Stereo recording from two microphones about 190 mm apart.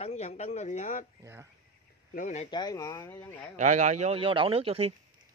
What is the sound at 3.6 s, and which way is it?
Speech, 40° right (ahead or behind).